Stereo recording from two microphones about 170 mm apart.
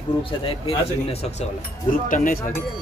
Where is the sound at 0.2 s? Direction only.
35° left (ahead or behind).